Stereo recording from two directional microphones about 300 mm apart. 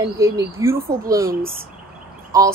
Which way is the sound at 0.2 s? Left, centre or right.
Centre.